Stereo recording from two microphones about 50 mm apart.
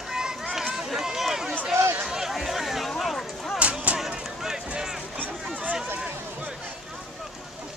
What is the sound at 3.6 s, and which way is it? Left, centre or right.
Music, right.